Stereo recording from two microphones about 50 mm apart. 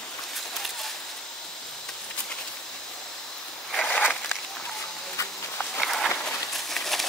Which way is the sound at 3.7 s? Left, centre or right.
Centre.